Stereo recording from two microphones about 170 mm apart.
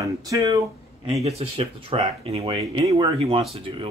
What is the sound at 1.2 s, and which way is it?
Speech, 35° right (ahead or behind).